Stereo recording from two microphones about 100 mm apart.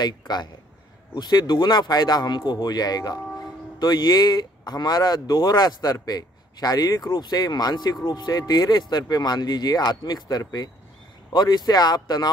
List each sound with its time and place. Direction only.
0.0 s speech: 45° left (ahead or behind)